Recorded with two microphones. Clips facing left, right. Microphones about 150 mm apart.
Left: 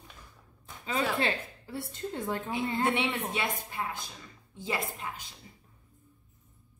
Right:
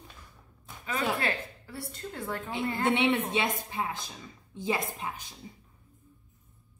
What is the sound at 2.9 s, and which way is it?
A woman's voice, 25° right (ahead or behind).